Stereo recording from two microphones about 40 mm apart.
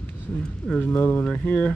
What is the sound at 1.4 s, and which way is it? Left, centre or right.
Speech, left.